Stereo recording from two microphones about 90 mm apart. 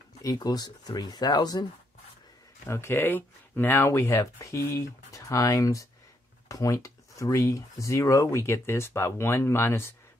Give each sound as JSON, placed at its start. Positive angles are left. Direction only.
{"t": 0.2, "sound": "speech", "side_deg": 45}
{"t": 2.7, "sound": "speech", "side_deg": 25}